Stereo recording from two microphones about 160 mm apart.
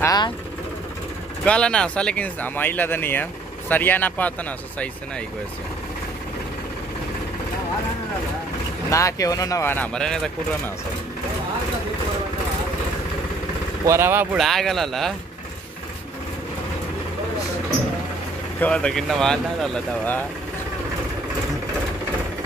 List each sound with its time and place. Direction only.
0.0 s vehicle: 25° left (ahead or behind)
1.4 s speech: 5° left (ahead or behind)
8.9 s speech: 20° left (ahead or behind); by 10.3 s 5° left (ahead or behind)
13.8 s speech: 15° right (ahead or behind)
14.3 s speech: centre (ahead or behind)
18.6 s speech: 5° left (ahead or behind)